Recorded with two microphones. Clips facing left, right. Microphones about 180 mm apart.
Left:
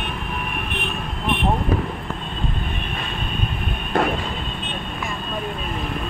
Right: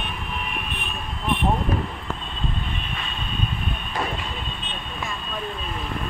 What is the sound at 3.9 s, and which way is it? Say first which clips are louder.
Vehicle: left 8 dB; 60° left (ahead or behind).